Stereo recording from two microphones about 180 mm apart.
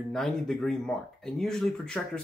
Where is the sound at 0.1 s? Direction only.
5° left (ahead or behind).